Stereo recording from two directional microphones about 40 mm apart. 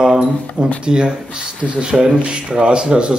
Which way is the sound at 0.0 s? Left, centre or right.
Right.